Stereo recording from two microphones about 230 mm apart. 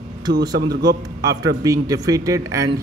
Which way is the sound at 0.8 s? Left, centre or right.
Centre.